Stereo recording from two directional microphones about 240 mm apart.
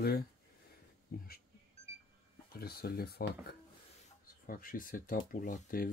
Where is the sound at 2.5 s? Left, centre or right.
Left.